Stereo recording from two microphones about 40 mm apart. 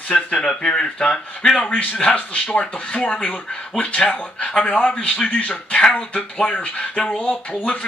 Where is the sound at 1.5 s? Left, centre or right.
Left.